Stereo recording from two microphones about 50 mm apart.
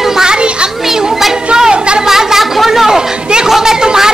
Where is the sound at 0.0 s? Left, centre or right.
Centre.